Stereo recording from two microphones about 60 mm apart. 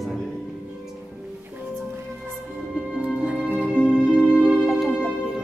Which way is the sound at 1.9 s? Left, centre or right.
Right.